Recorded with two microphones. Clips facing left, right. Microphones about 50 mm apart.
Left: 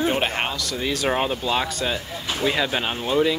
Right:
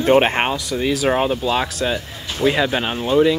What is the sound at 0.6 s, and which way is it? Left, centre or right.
Speech, centre.